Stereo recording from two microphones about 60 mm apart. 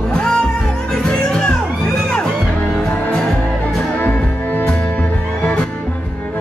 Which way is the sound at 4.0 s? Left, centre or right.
Left.